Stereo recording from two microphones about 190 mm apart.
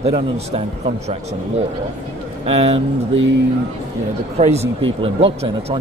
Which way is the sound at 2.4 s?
30° right (ahead or behind).